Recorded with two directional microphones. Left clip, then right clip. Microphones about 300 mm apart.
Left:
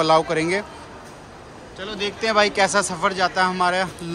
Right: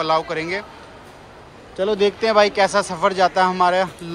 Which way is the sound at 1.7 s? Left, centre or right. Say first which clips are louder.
Right 9 dB; centre.